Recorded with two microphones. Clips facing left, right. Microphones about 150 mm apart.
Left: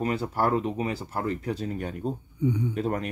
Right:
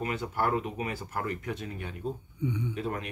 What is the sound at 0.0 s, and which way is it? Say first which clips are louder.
A man's voice: left 4 dB; 35° left (ahead or behind).